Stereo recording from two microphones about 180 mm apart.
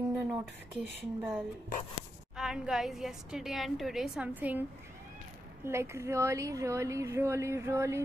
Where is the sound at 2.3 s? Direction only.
5° right (ahead or behind).